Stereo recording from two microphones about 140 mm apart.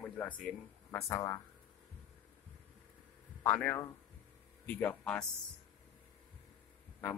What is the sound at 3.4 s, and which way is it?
Speech, 15° left (ahead or behind).